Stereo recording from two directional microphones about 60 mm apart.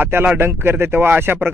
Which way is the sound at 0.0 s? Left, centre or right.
Right.